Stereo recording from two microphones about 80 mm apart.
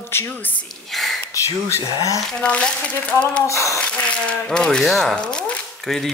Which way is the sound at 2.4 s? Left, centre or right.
Centre.